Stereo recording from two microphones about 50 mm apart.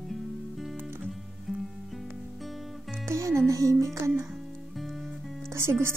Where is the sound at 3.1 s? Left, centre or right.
Right.